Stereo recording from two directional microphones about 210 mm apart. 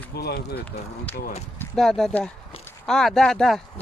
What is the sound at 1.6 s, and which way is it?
Speech, centre (ahead or behind).